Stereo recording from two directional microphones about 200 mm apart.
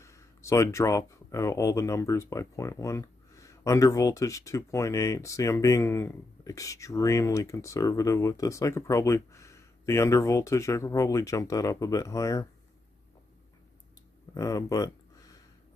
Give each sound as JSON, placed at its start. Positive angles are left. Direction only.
{"t": 0.0, "sound": "speech", "side_deg": 15}
{"t": 14.3, "sound": "speech", "side_deg": 15}